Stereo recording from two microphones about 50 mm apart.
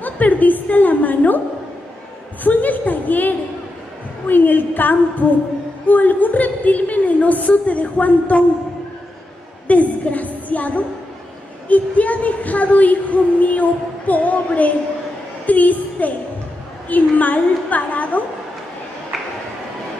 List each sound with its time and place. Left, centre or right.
0.0 s a sound: left
2.4 s a woman's voice: left
9.7 s a woman's voice: left